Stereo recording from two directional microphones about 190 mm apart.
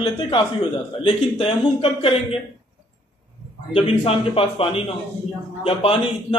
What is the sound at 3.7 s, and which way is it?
A man's voice, 30° left (ahead or behind).